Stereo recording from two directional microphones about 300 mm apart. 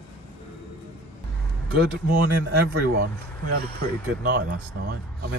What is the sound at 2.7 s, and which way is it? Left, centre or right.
Speech, right.